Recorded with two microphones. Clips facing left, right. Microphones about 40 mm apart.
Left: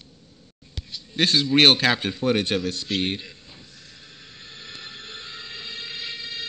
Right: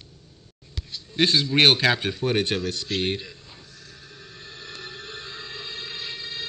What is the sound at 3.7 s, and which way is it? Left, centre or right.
Music, centre.